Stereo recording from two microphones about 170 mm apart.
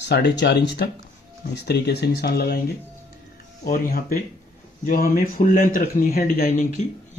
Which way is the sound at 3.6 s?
60° left (ahead or behind).